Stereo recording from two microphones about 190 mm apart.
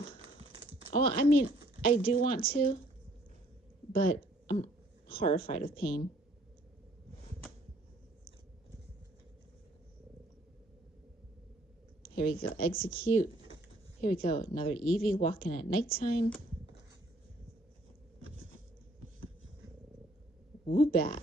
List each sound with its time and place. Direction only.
0.4 s a sound: 30° right (ahead or behind)
0.9 s a woman's voice: 50° left (ahead or behind)
3.9 s speech: 50° left (ahead or behind)
5.0 s speech: 30° left (ahead or behind)
5.4 s a woman's voice: 50° left (ahead or behind)
12.0 s a sound: 50° left (ahead or behind)
12.5 s a woman's voice: 50° left (ahead or behind)
20.7 s a woman's voice: 50° left (ahead or behind)